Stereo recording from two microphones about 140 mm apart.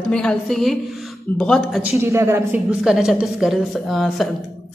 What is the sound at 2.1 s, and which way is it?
Speech, 20° right (ahead or behind).